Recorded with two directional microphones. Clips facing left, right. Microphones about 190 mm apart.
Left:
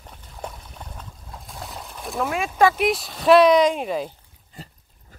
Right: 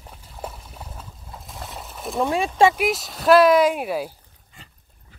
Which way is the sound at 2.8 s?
Centre (ahead or behind).